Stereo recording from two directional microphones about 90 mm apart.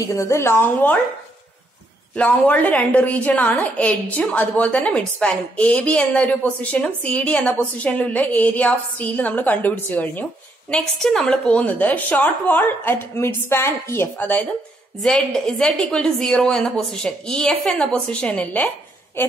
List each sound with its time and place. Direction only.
0.0 s a woman's voice: 35° left (ahead or behind)
2.1 s a woman's voice: 15° left (ahead or behind)
10.7 s a woman's voice: 5° left (ahead or behind)
15.0 s a woman's voice: 5° left (ahead or behind); by 19.3 s 25° left (ahead or behind)